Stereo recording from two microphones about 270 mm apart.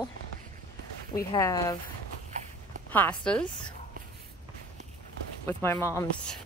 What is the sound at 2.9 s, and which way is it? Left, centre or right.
Speech, centre.